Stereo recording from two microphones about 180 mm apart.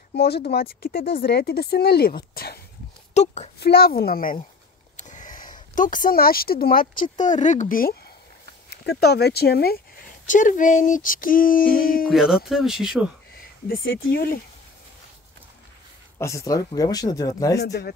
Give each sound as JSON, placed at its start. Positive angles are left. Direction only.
{"t": 0.1, "sound": "speech", "side_deg": 65}
{"t": 3.2, "sound": "speech", "side_deg": 35}
{"t": 3.5, "sound": "speech", "side_deg": 60}
{"t": 8.6, "sound": "speech", "side_deg": 65}
{"t": 10.2, "sound": "female singing", "side_deg": 45}
{"t": 12.1, "sound": "speech", "side_deg": 0}
{"t": 14.0, "sound": "speech", "side_deg": 55}
{"t": 16.2, "sound": "speech", "side_deg": 15}